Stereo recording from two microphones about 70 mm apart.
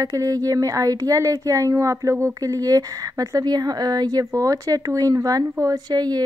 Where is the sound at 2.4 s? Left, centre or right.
Right.